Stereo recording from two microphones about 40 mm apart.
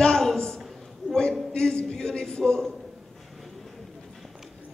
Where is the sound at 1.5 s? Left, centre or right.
Left.